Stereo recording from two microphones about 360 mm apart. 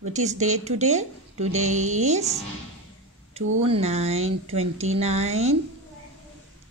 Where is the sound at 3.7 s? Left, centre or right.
Centre.